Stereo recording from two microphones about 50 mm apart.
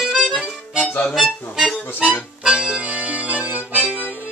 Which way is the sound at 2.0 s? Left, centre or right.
Centre.